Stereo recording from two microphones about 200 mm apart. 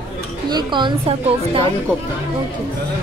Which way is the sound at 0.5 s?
25° right (ahead or behind).